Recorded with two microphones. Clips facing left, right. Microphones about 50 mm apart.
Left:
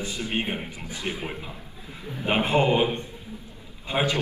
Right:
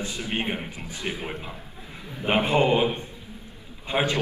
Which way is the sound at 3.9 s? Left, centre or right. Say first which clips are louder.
Even; right.